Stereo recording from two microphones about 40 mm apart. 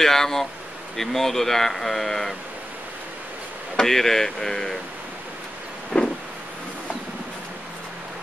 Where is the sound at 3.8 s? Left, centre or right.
Centre.